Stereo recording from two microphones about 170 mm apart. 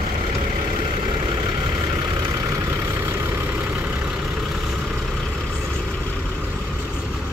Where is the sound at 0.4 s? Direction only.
30° right (ahead or behind).